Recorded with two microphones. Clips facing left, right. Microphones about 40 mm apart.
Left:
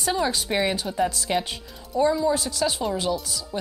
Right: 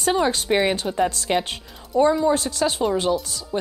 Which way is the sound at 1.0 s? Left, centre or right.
Right.